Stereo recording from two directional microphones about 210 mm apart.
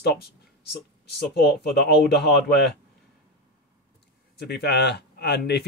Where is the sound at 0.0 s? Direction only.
50° left (ahead or behind).